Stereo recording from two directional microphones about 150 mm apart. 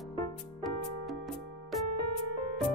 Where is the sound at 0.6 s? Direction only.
Centre (ahead or behind).